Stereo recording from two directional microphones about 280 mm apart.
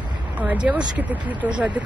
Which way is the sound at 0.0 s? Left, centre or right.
Centre.